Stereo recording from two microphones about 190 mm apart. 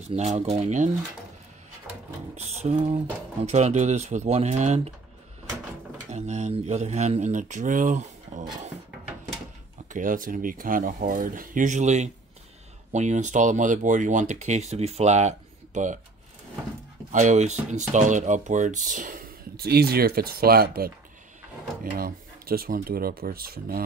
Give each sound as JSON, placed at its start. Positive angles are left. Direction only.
{"t": 0.1, "sound": "speech", "side_deg": -35}
{"t": 2.3, "sound": "a sound", "side_deg": -35}
{"t": 3.4, "sound": "speech", "side_deg": -35}
{"t": 6.0, "sound": "speech", "side_deg": -40}
{"t": 9.8, "sound": "speech", "side_deg": -45}
{"t": 17.1, "sound": "speech", "side_deg": -40}
{"t": 21.9, "sound": "speech", "side_deg": -50}